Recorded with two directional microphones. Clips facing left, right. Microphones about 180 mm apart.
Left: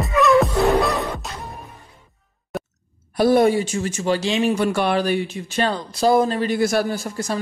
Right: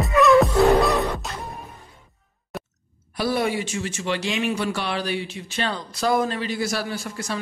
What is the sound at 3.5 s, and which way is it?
Speech, 40° left (ahead or behind).